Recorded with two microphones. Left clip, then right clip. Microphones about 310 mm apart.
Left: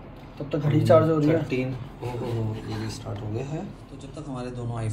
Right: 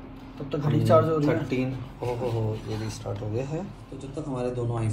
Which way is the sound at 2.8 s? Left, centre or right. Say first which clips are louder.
Right 1 dB; centre.